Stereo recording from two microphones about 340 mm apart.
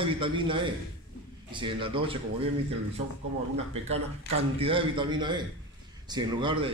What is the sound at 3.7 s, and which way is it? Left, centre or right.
A man's voice, centre.